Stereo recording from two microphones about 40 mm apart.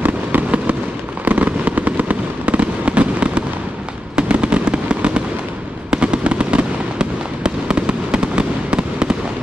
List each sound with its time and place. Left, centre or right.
0.0 s fireworks: right